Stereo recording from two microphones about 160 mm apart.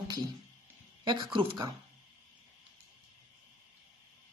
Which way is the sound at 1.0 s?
30° right (ahead or behind).